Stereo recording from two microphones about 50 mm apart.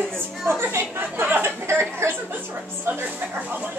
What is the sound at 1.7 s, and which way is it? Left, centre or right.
Speech, right.